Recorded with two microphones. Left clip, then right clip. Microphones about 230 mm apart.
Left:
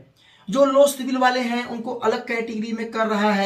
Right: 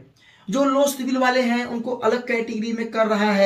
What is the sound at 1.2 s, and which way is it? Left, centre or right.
Speech, centre.